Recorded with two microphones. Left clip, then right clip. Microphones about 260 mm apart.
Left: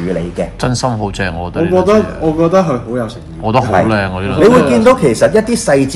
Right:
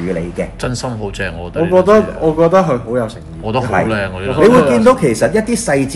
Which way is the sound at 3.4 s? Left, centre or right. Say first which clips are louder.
Left 4 dB; centre.